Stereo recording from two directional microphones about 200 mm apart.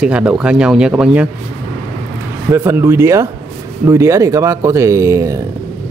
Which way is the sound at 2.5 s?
15° right (ahead or behind).